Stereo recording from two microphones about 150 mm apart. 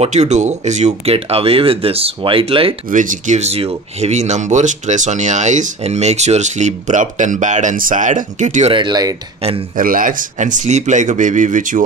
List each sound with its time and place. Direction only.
0.0 s speech: 50° right (ahead or behind)
2.9 s speech: 60° right (ahead or behind)
8.7 s speech: 30° right (ahead or behind)
9.8 s a man's voice: 65° right (ahead or behind)